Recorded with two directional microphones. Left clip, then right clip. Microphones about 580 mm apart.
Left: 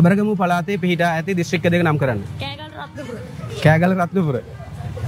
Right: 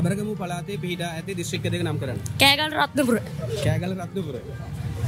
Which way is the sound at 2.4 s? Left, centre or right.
Right.